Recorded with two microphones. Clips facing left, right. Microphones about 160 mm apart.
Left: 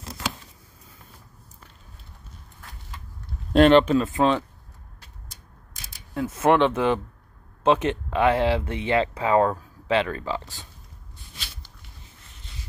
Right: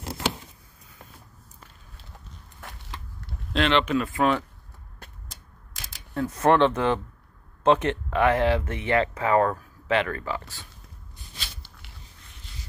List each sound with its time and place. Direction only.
0.0 s a sound: 30° right (ahead or behind)
3.5 s speech: 45° left (ahead or behind)
3.8 s speech: 25° left (ahead or behind)
5.7 s camera: 90° right
6.1 s speech: 20° left (ahead or behind)